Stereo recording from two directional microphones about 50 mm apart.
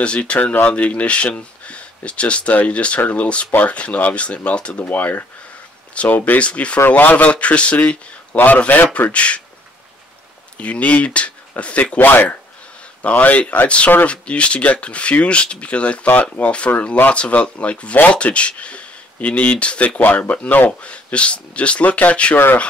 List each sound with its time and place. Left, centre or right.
0.0 s speech: left
4.9 s a man's voice: left
10.6 s speech: left
12.1 s a man's voice: left
20.8 s speech: left